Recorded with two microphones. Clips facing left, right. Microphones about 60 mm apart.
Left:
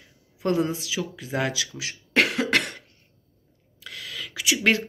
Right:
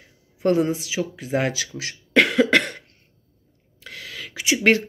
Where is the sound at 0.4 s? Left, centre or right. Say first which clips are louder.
Right 4 dB; right.